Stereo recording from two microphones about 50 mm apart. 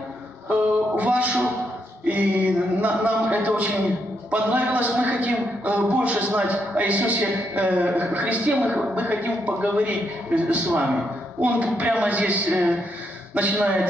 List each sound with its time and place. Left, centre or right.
0.5 s music: right
2.0 s a sound: right
4.3 s a man's voice: right